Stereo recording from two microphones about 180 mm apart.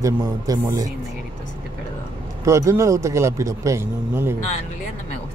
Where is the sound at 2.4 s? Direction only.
15° right (ahead or behind).